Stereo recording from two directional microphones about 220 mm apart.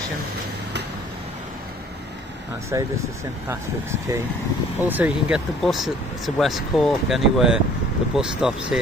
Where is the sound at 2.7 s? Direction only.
15° right (ahead or behind).